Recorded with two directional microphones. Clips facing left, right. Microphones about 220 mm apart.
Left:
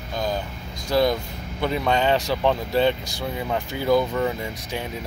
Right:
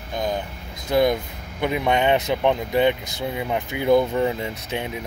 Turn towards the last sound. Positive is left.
turn(degrees=-20)  # may be behind; listen again after turning